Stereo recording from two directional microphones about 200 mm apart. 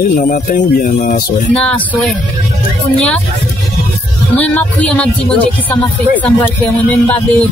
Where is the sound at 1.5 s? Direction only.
5° left (ahead or behind).